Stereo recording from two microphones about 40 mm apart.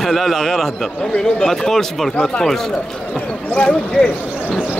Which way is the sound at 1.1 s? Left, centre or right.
Centre.